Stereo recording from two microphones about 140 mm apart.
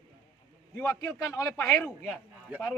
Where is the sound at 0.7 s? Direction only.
20° left (ahead or behind).